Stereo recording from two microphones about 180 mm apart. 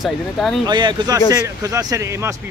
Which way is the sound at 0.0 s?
Centre (ahead or behind).